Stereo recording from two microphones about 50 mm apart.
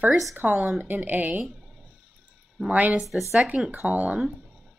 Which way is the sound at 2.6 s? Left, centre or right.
Right.